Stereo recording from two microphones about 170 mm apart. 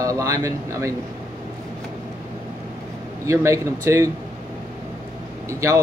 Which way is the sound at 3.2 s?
15° right (ahead or behind).